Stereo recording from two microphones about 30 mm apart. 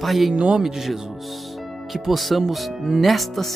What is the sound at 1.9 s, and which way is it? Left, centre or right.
Speech, centre.